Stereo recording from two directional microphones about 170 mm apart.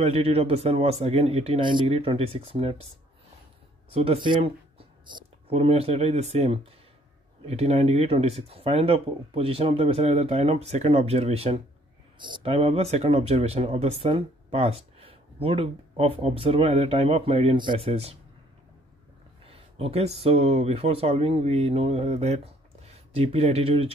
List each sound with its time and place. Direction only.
0.0 s speech: 35° right (ahead or behind)
3.9 s speech: 35° right (ahead or behind)
19.4 s speech: 35° right (ahead or behind)